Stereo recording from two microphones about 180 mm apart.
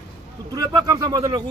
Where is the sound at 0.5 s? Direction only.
20° right (ahead or behind).